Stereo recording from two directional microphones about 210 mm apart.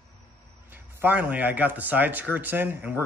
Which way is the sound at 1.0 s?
5° right (ahead or behind).